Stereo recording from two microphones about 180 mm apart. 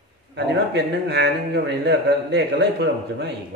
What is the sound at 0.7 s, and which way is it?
A man's voice, 70° right (ahead or behind).